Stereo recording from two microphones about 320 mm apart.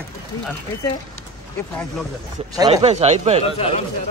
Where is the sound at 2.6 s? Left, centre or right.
Centre.